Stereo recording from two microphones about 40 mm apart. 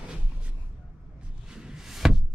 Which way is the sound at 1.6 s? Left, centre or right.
Centre.